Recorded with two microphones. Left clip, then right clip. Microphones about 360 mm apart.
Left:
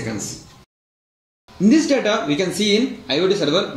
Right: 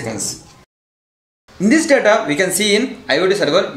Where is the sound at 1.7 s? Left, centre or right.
Right.